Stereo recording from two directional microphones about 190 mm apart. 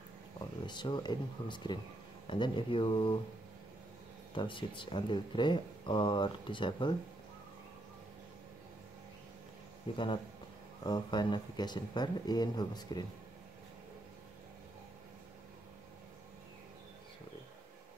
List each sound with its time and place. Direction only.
0.4 s speech: 25° left (ahead or behind)
4.3 s speech: 25° left (ahead or behind)
9.9 s speech: 25° left (ahead or behind)